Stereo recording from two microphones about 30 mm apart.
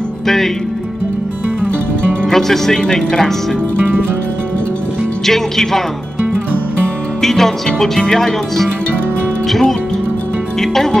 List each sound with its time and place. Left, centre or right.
2.2 s speech: centre
2.8 s speech: left
5.2 s music: centre
7.2 s music: centre
8.0 s speech: centre
9.5 s music: centre